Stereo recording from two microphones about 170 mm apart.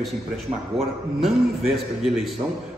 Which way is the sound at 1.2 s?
Centre (ahead or behind).